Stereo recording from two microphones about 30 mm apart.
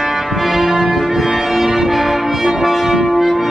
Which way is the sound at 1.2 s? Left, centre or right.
Centre.